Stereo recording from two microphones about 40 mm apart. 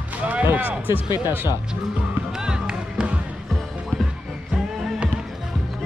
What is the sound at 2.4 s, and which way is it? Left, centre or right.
Music, centre.